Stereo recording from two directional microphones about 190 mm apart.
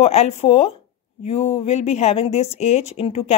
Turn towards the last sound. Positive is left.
turn(degrees=30)  # may be behind; listen again after turning